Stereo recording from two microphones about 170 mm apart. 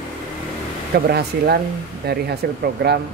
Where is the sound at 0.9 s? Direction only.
70° right (ahead or behind).